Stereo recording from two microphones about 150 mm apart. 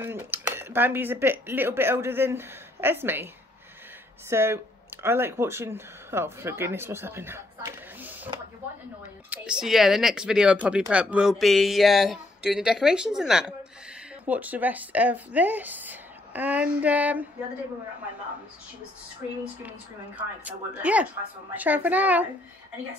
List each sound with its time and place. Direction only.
0.0 s speech: 15° right (ahead or behind)
4.3 s speech: 15° right (ahead or behind)
9.3 s speech: 5° right (ahead or behind)
20.2 s speech: 10° right (ahead or behind)